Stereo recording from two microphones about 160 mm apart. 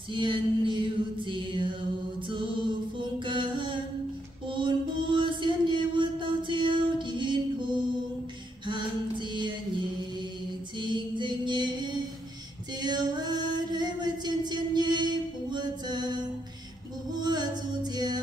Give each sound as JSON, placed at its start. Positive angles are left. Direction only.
{"t": 0.1, "sound": "music", "side_deg": -30}
{"t": 3.3, "sound": "mantra", "side_deg": -30}
{"t": 4.5, "sound": "music", "side_deg": -30}
{"t": 10.8, "sound": "music", "side_deg": -30}
{"t": 17.2, "sound": "music", "side_deg": -25}